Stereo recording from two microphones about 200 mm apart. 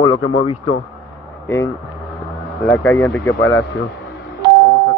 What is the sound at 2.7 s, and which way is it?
Speech, 10° left (ahead or behind).